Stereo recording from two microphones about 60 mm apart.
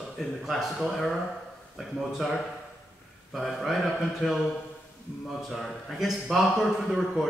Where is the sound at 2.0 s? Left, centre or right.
Centre.